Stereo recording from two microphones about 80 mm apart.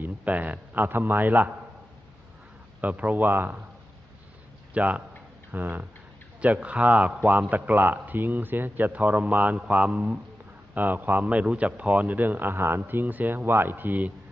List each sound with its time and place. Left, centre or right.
0.0 s a man's voice: centre
2.8 s a man's voice: centre
4.7 s a man's voice: centre